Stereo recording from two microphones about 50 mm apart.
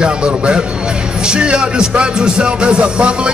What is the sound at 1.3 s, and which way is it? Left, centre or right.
Music, centre.